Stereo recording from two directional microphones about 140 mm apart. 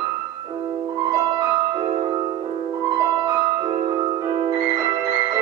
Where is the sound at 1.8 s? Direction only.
35° right (ahead or behind).